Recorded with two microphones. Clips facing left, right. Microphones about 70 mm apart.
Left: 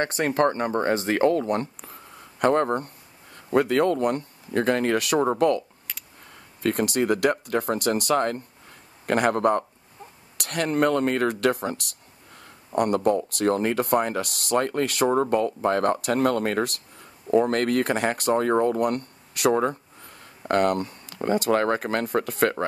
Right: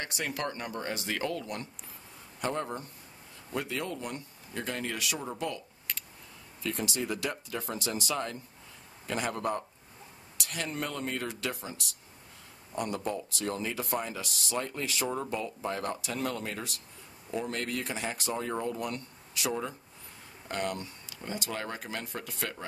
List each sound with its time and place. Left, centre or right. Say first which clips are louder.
0.0 s speech: left 13 dB; left
2.3 s speech: left 12 dB; left
6.6 s speech: left 11 dB; left